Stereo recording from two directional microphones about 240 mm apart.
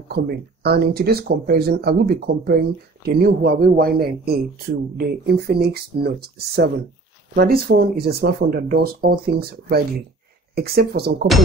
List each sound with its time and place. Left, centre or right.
0.1 s speech: right